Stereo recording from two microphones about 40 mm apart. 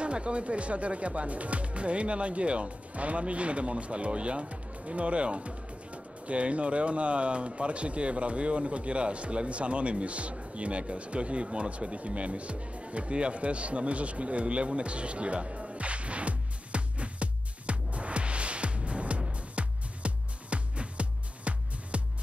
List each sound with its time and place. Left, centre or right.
0.0 s speech: right
19.5 s music: right